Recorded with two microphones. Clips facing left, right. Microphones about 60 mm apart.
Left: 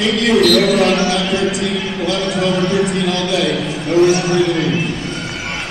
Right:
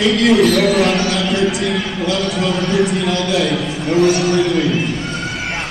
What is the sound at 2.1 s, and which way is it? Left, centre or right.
A man's voice, centre.